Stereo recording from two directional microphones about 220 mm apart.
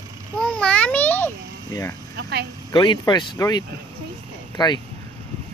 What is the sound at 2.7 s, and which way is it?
Speech, 20° left (ahead or behind).